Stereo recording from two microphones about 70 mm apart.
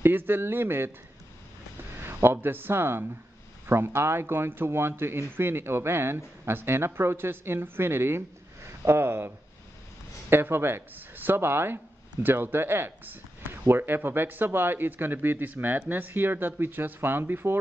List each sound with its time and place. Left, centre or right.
0.0 s speech: right
2.3 s speech: right
10.3 s speech: right